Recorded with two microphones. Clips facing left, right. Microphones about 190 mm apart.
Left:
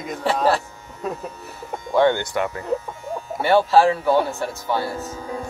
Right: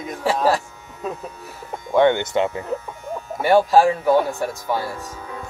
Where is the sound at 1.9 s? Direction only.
20° right (ahead or behind).